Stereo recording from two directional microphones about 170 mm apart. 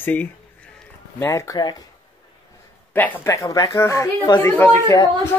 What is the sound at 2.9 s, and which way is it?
Speech, 10° left (ahead or behind).